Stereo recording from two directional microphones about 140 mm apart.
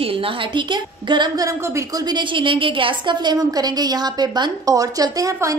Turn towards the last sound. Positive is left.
turn(degrees=-25)  # may be behind; listen again after turning